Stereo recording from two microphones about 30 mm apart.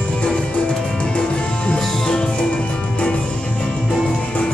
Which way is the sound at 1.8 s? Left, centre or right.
Centre.